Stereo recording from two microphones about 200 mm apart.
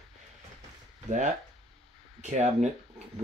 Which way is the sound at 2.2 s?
35° right (ahead or behind).